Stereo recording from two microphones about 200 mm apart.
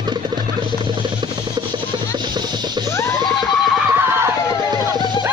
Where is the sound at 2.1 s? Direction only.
20° right (ahead or behind).